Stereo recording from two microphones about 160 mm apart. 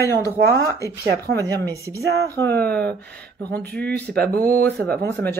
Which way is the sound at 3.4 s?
10° left (ahead or behind).